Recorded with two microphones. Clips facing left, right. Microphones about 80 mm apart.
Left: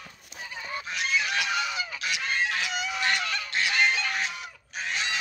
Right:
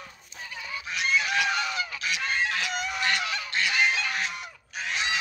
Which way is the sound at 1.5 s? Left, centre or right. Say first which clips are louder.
Even; centre.